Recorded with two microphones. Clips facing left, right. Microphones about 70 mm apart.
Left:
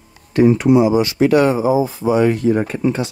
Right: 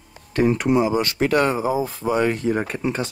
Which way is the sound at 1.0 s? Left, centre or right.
Right.